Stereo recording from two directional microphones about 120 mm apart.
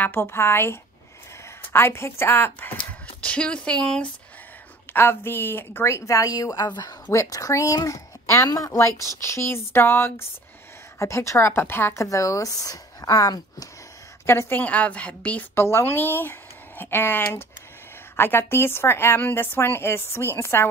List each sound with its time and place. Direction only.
0.0 s a woman's voice: 20° left (ahead or behind)
4.9 s a woman's voice: 20° left (ahead or behind)